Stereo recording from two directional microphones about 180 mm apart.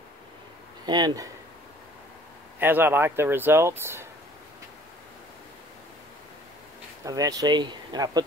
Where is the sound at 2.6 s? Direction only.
10° right (ahead or behind).